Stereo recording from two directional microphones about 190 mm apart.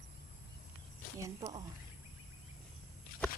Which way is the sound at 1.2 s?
20° right (ahead or behind).